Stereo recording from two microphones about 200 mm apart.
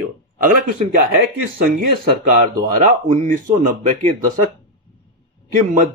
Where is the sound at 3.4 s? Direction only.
40° right (ahead or behind).